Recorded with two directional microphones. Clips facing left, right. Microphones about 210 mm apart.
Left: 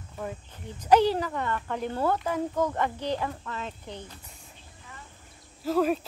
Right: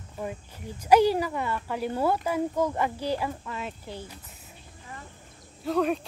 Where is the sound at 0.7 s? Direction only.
10° right (ahead or behind).